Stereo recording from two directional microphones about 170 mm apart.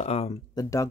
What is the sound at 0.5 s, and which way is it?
Speech, 20° left (ahead or behind).